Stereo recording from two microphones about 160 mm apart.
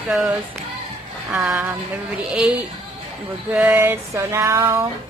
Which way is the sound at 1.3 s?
10° right (ahead or behind).